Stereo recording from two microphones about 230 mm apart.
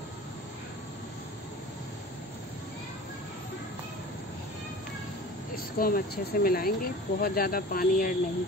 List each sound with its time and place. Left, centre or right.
5.8 s speech: left